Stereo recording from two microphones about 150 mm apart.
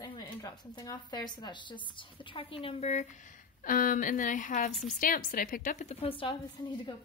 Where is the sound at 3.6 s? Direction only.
65° left (ahead or behind).